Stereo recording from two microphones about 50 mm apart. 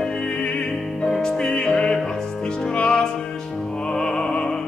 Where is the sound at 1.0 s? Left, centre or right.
Centre.